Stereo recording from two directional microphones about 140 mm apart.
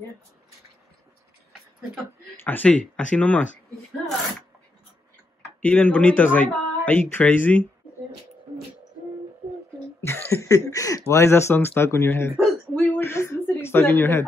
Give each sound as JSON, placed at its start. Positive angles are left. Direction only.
{"t": 2.3, "sound": "speech", "side_deg": 15}
{"t": 5.6, "sound": "speech", "side_deg": 10}
{"t": 10.0, "sound": "speech", "side_deg": 15}
{"t": 12.7, "sound": "a sound", "side_deg": 15}